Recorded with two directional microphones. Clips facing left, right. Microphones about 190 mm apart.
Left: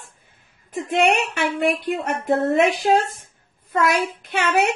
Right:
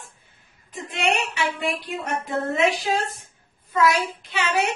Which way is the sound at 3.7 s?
60° left (ahead or behind).